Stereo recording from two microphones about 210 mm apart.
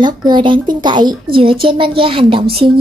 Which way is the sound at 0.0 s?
20° right (ahead or behind).